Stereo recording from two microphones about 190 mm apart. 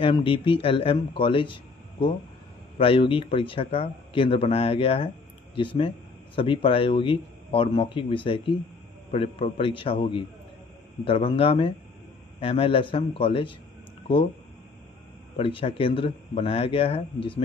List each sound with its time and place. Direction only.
0.0 s speech: 25° left (ahead or behind)
15.3 s speech: 30° left (ahead or behind)